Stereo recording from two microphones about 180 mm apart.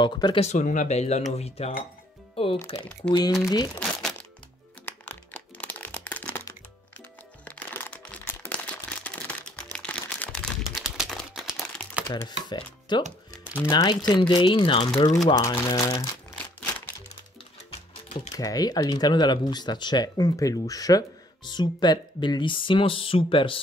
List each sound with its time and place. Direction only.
0.0 s speech: 25° left (ahead or behind)
0.5 s speech: 45° left (ahead or behind); by 3.8 s 20° left (ahead or behind)
3.8 s crumpling: 5° left (ahead or behind)
7.4 s a sound: 10° left (ahead or behind)
12.4 s music: 25° left (ahead or behind)
13.7 s speech: 25° left (ahead or behind)
18.3 s speech: 20° left (ahead or behind)